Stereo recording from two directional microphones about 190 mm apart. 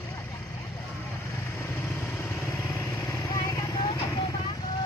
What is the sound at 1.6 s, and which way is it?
Vehicle, 15° left (ahead or behind).